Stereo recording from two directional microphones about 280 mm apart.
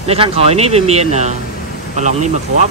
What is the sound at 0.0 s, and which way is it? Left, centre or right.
Speech, right.